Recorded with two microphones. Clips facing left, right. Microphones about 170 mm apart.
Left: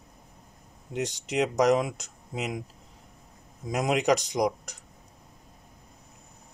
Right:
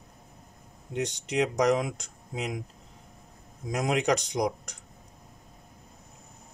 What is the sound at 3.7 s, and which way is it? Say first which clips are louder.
Speech: left 1 dB; centre (ahead or behind).